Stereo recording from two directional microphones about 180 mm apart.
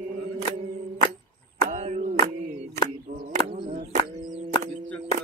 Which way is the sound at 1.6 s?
40° right (ahead or behind).